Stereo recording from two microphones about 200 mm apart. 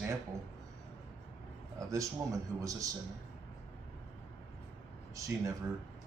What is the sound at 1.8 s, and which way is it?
Speech, 15° right (ahead or behind).